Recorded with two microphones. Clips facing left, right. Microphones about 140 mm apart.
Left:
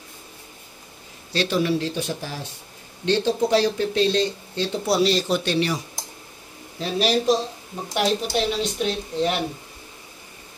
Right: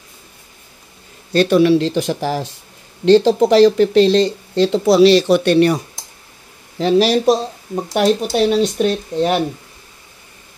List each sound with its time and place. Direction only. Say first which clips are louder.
1.3 s speech: right 10 dB; 55° right (ahead or behind)
6.8 s speech: right 8 dB; 80° right
7.7 s speech: right 8 dB; 50° right (ahead or behind)